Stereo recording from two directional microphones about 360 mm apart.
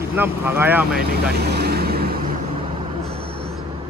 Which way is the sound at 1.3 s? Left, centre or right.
Right.